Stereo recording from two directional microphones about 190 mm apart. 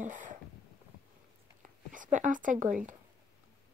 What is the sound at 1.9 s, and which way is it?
Speech, 45° right (ahead or behind).